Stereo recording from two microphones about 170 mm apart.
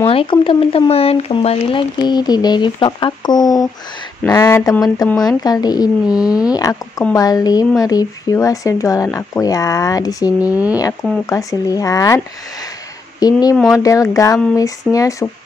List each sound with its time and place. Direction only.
0.1 s speech: 30° left (ahead or behind)
6.0 s speech: 5° right (ahead or behind)
6.5 s speech: 20° left (ahead or behind)
10.4 s speech: 10° right (ahead or behind)
10.8 s speech: 20° left (ahead or behind)
13.2 s speech: 20° left (ahead or behind)